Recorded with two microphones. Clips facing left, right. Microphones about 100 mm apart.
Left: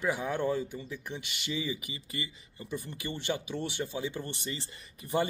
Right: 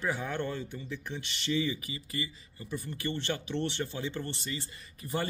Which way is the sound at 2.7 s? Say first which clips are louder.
Right 2 dB; 15° left (ahead or behind).